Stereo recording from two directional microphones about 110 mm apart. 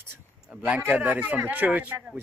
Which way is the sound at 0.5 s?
15° right (ahead or behind).